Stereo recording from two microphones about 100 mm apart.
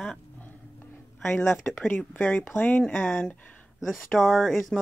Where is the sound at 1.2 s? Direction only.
25° left (ahead or behind).